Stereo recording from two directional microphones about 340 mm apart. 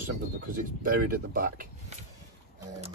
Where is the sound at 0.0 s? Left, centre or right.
Right.